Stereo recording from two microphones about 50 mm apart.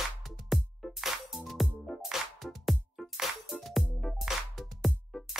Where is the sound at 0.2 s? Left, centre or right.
Centre.